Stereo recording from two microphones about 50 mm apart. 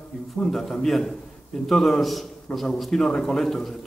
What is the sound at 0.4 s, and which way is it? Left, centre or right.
A man's voice, centre.